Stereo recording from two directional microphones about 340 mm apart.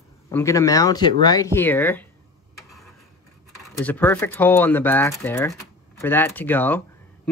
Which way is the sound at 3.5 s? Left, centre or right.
Centre.